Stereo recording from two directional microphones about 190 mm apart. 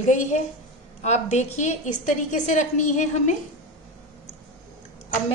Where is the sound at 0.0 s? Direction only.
40° left (ahead or behind).